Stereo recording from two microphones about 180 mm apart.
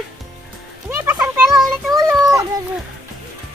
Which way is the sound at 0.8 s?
10° right (ahead or behind).